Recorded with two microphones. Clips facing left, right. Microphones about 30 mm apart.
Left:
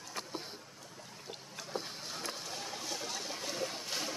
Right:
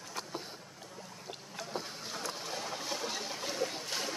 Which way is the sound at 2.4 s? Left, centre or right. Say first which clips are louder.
Right 3 dB; centre.